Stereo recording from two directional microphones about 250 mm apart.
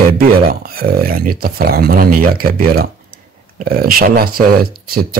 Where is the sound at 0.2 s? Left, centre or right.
Right.